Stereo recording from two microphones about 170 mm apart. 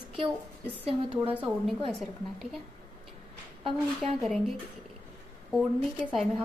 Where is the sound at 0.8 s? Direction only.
35° right (ahead or behind).